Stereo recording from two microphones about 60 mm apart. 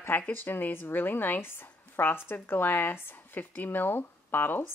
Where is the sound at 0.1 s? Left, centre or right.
Left.